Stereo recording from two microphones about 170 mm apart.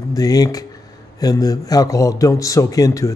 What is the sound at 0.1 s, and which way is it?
A man's voice, 20° left (ahead or behind).